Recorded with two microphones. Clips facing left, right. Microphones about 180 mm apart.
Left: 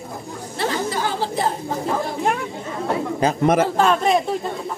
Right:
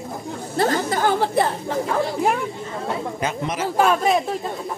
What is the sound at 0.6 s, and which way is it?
Chatter, 50° right (ahead or behind).